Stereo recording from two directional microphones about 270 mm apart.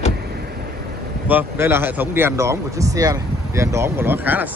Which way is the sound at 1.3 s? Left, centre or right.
Centre.